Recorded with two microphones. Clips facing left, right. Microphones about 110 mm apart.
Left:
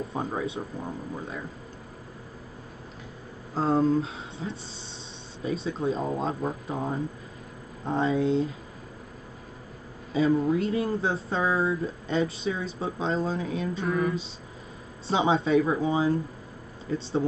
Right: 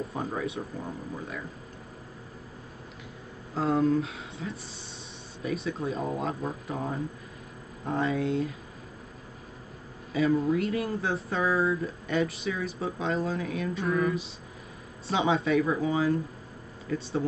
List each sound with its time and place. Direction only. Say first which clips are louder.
0.1 s speech: left 2 dB; 25° left (ahead or behind)
3.5 s speech: left 2 dB; 30° left (ahead or behind)
7.8 s speech: left 3 dB; 25° left (ahead or behind)
10.1 s speech: left 2 dB; 25° left (ahead or behind)
13.8 s a sound: even; centre (ahead or behind)
15.0 s speech: left 2 dB; 30° left (ahead or behind)